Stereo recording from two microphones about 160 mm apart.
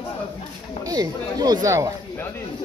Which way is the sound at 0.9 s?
25° right (ahead or behind).